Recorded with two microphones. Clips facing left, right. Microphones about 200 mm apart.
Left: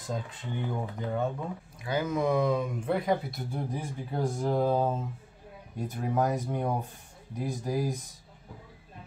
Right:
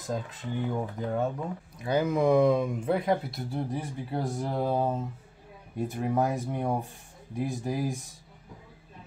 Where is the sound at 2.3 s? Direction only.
10° right (ahead or behind).